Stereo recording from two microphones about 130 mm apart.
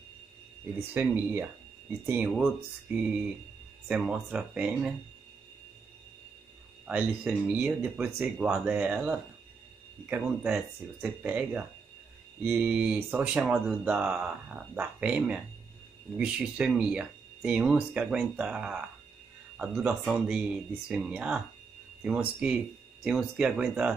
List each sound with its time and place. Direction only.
0.9 s speech: 15° right (ahead or behind)
2.2 s speech: 5° right (ahead or behind)
6.9 s speech: 10° right (ahead or behind)